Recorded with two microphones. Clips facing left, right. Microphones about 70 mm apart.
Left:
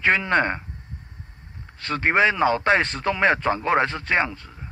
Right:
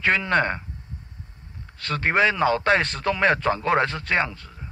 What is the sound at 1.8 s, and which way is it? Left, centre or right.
Speech, centre.